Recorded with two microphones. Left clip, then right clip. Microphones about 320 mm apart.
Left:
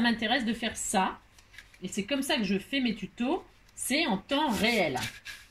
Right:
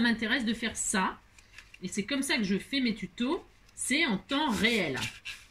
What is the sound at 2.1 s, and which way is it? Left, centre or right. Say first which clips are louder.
Speech: left 1 dB; left.